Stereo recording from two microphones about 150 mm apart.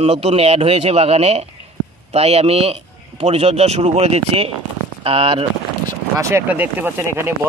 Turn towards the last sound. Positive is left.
turn(degrees=-15)  # may be behind; listen again after turning